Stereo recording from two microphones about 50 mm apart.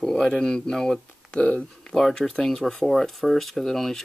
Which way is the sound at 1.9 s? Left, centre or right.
Centre.